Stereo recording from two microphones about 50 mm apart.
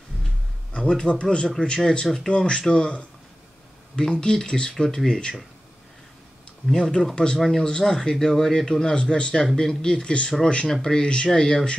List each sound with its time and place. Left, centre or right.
0.7 s a man's voice: centre
6.7 s a man's voice: centre